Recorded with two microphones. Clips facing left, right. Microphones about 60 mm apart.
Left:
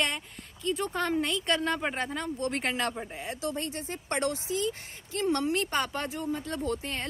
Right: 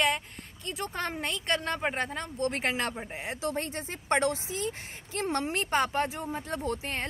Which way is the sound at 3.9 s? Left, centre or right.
Right.